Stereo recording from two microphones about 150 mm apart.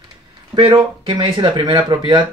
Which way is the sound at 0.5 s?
5° right (ahead or behind).